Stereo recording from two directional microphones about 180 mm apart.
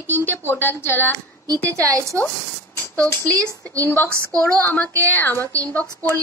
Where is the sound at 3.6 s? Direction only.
15° right (ahead or behind).